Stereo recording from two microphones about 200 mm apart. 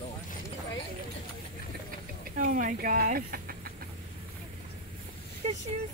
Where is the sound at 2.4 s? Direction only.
40° right (ahead or behind).